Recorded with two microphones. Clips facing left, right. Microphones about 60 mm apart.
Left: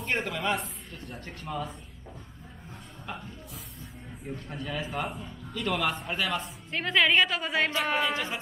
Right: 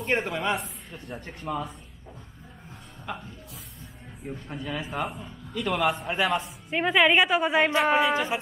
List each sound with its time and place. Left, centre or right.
0.0 s a man's voice: centre
4.3 s a man's voice: centre